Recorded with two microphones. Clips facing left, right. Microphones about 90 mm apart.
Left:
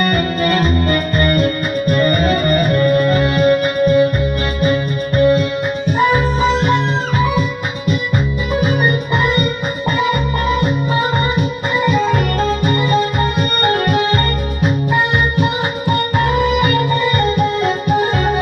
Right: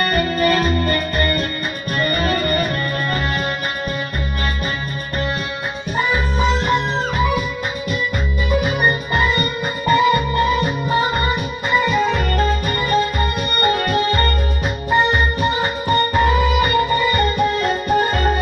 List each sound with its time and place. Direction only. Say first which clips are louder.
0.4 s music: even; 30° left (ahead or behind)